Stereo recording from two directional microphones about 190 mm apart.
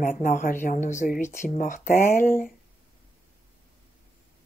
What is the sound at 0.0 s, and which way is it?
A woman's voice, 45° left (ahead or behind).